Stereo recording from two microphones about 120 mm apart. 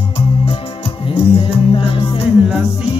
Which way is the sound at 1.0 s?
50° left (ahead or behind).